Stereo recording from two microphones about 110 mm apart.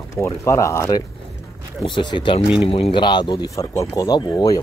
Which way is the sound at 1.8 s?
45° left (ahead or behind).